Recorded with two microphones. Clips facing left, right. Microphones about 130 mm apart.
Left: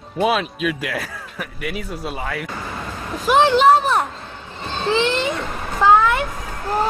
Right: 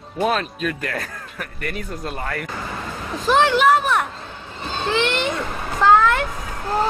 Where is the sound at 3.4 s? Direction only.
30° left (ahead or behind).